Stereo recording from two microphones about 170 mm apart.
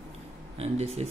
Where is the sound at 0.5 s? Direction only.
35° right (ahead or behind).